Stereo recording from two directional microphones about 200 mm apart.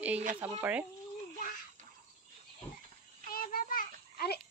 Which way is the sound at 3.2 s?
45° left (ahead or behind).